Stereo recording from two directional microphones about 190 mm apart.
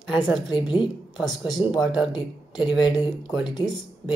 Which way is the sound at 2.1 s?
20° left (ahead or behind).